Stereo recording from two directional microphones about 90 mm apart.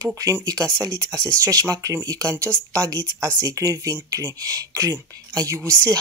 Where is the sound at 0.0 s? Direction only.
40° right (ahead or behind).